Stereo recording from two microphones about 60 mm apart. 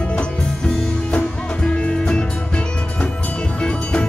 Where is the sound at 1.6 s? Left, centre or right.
Centre.